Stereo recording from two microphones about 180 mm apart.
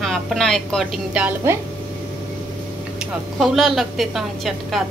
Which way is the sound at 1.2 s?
15° right (ahead or behind).